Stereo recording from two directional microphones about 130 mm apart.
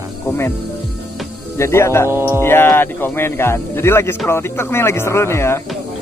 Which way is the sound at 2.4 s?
15° left (ahead or behind).